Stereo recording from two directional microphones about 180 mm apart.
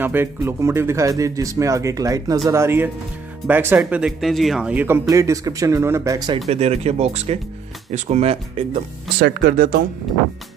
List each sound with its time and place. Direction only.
0.0 s speech: 10° right (ahead or behind)
6.5 s speech: 35° right (ahead or behind)
9.2 s speech: 60° right (ahead or behind)